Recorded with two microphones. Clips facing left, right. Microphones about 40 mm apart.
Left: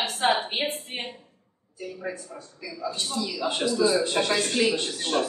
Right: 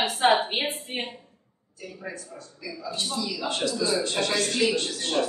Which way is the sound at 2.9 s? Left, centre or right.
Centre.